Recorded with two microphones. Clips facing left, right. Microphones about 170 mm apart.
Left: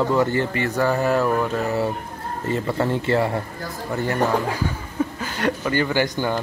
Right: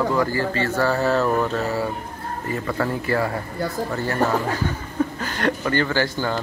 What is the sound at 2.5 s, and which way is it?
Speech, 25° left (ahead or behind).